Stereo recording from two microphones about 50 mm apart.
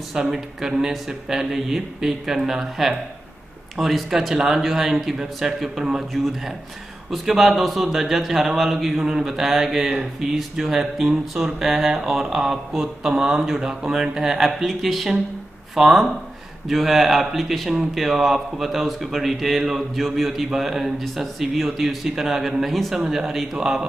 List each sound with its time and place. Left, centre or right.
0.1 s speech: centre